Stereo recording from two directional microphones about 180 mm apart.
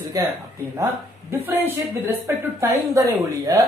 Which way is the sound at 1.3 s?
15° right (ahead or behind).